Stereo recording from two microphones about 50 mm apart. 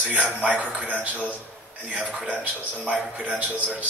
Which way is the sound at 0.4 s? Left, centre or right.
Right.